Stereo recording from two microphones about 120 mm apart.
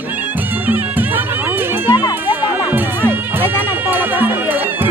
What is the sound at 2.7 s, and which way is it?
Music, 15° right (ahead or behind).